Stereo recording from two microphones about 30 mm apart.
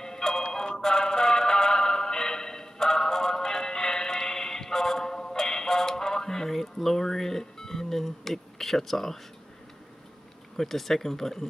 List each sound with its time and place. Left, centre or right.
0.0 s music: left
10.6 s speech: centre